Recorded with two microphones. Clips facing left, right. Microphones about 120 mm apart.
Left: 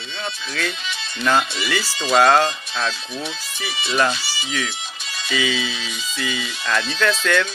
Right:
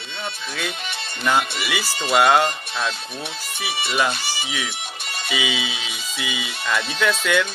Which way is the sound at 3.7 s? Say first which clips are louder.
Left 2 dB; 60° right (ahead or behind).